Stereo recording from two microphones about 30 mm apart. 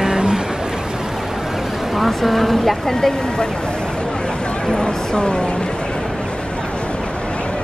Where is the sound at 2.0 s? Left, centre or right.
Centre.